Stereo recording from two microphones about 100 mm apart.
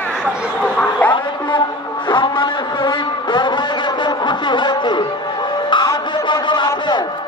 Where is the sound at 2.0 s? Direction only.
50° left (ahead or behind).